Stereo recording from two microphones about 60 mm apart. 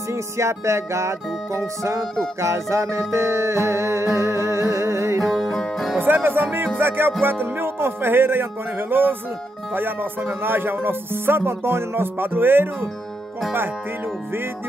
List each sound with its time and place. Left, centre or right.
0.1 s music: right
5.2 s music: centre
5.9 s music: right